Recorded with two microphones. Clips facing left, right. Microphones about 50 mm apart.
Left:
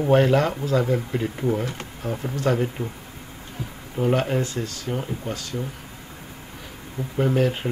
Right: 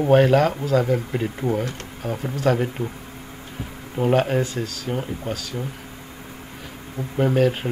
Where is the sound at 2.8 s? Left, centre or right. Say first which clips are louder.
Right 2 dB; left.